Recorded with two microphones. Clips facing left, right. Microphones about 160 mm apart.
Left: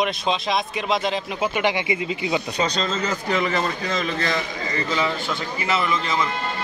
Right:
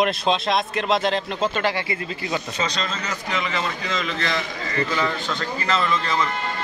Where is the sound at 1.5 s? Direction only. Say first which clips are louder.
Left 2 dB; 15° left (ahead or behind).